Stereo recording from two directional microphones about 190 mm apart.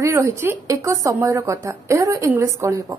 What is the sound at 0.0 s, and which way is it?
Speech, 15° right (ahead or behind).